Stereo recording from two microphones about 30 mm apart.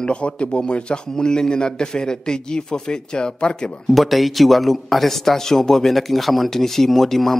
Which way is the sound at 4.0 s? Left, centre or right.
Centre.